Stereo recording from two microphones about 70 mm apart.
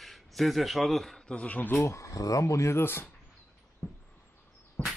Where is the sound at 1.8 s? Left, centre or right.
Left.